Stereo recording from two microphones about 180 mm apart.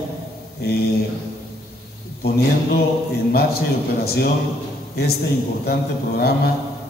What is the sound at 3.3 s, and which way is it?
A man's voice, 60° left (ahead or behind).